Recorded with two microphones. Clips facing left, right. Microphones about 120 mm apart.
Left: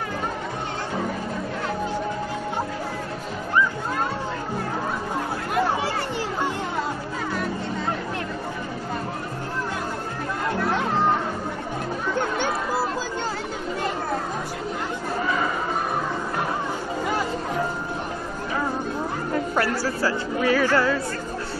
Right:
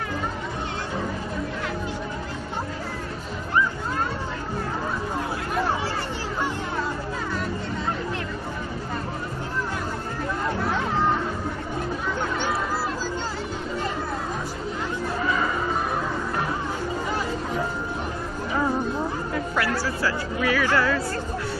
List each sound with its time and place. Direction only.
19.3 s music: 40° left (ahead or behind)
20.1 s chatter: 30° left (ahead or behind)
20.7 s music: 25° left (ahead or behind)